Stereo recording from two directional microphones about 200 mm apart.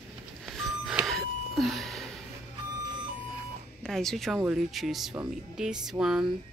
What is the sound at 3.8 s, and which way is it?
Speech, centre (ahead or behind).